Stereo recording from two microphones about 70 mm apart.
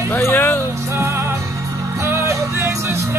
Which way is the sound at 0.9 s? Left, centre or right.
Right.